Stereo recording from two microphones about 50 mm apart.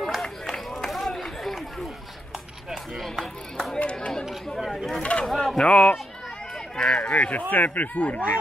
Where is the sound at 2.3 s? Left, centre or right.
Centre.